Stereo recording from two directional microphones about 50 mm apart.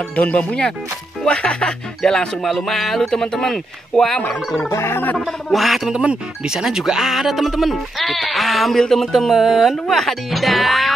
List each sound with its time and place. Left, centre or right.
0.1 s speech: left; by 4.2 s centre
4.6 s speech: left
5.1 s speech: centre
5.9 s speech: centre